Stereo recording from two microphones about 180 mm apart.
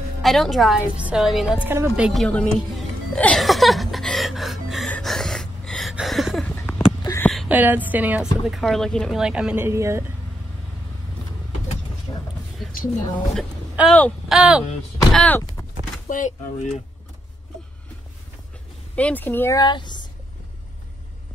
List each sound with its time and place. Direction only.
0.2 s music: centre (ahead or behind)
7.0 s a sound: 20° left (ahead or behind)
7.4 s speech: 10° right (ahead or behind)
12.1 s a sound: 20° left (ahead or behind)
13.1 s speech: centre (ahead or behind)
15.1 s speech: 10° left (ahead or behind)
16.1 s speech: 40° left (ahead or behind)
18.9 s speech: 10° left (ahead or behind); by 20.0 s 25° left (ahead or behind)